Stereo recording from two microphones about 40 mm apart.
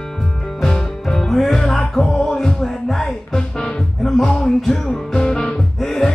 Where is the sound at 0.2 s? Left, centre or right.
Centre.